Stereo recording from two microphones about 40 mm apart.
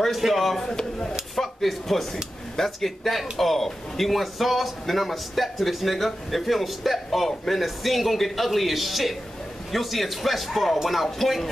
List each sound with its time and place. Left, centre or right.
0.1 s a man's voice: centre
0.7 s speech: centre
1.3 s a sound: centre
2.5 s a man's voice: centre